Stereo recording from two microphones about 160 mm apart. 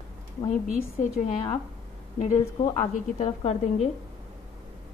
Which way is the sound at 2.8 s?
40° left (ahead or behind).